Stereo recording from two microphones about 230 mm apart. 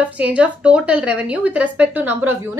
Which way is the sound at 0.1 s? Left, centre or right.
Centre.